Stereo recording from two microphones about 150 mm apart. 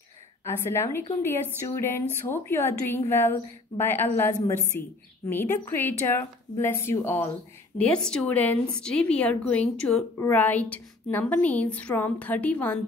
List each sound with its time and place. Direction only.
0.5 s speech: 15° left (ahead or behind)